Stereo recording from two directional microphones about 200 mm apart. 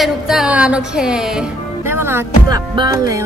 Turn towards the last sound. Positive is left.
turn(degrees=-15)  # may be behind; listen again after turning